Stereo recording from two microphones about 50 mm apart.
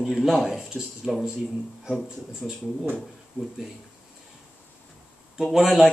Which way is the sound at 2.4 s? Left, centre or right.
Centre.